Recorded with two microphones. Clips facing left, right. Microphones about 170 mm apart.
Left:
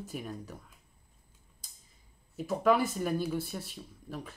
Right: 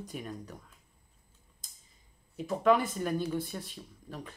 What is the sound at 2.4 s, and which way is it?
Speech, 5° left (ahead or behind).